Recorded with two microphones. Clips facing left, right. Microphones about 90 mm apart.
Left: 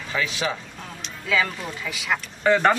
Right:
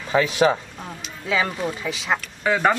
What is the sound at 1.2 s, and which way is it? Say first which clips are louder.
Speech: right 2 dB; 25° right (ahead or behind).